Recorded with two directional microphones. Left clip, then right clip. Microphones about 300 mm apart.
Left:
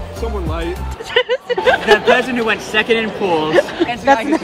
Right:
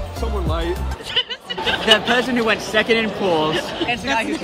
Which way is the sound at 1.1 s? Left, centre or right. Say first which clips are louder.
Left 7 dB; left.